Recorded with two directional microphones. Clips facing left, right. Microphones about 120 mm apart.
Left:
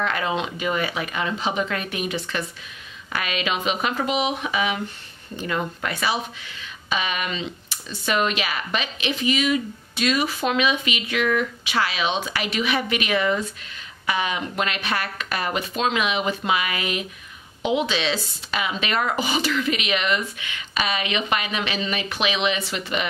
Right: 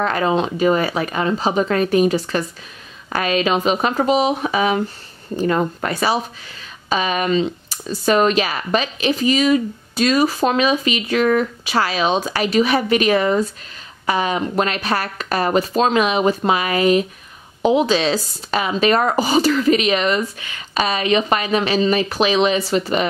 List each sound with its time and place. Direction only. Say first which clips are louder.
0.0 s speech: right 6 dB; 35° right (ahead or behind)